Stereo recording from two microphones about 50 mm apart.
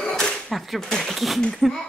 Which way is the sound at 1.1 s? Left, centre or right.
Centre.